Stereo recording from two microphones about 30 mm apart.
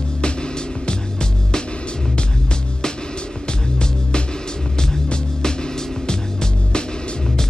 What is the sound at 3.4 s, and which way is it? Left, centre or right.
Music, left.